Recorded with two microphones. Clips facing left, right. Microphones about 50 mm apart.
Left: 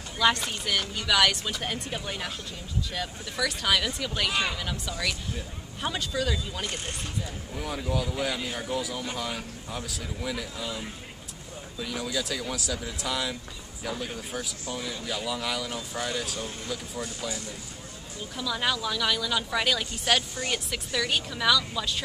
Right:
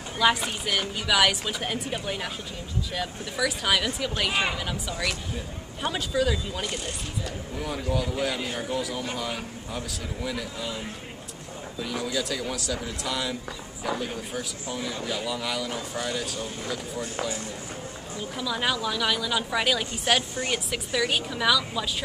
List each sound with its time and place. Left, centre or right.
0.2 s speech: centre
17.0 s speech: right
18.3 s speech: centre